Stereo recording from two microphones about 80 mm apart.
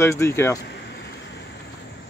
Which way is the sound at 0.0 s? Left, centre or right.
Left.